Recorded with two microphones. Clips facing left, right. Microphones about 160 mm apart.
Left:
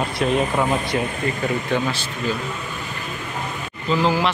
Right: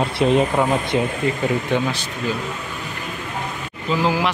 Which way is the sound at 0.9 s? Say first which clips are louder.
Right 5 dB; 20° right (ahead or behind).